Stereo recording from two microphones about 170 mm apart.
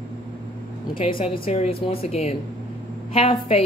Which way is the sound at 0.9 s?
30° left (ahead or behind).